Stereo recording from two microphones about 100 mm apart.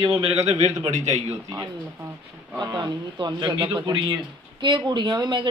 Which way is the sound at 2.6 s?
45° right (ahead or behind).